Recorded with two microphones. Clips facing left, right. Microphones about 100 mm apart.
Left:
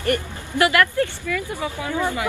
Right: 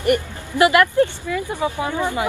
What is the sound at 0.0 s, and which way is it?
Speech, 20° right (ahead or behind).